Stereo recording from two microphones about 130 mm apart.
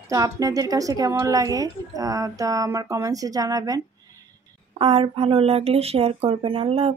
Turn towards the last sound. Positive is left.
turn(degrees=-45)  # may be behind; listen again after turning